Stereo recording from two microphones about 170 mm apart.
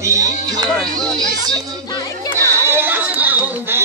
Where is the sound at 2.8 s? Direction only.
10° right (ahead or behind).